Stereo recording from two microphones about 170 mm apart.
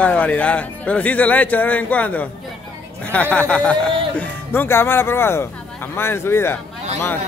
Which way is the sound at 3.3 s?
5° left (ahead or behind).